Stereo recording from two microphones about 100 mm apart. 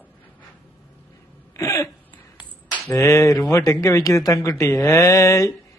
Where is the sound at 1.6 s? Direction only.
30° left (ahead or behind).